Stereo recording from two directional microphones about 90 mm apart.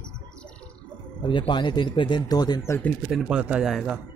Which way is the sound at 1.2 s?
60° left (ahead or behind).